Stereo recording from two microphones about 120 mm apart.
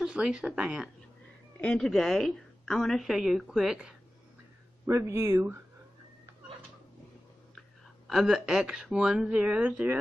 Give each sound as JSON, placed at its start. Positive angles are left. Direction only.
{"t": 0.0, "sound": "speech", "side_deg": -5}
{"t": 1.6, "sound": "a woman's voice", "side_deg": 5}
{"t": 4.8, "sound": "speech", "side_deg": -20}
{"t": 8.1, "sound": "a woman's voice", "side_deg": -5}